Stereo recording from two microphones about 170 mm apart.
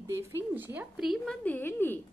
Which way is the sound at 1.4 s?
10° left (ahead or behind).